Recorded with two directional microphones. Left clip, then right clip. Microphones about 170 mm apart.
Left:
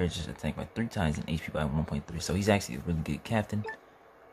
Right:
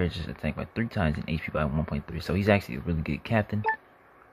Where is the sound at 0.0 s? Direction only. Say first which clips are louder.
Right 2 dB; 10° right (ahead or behind).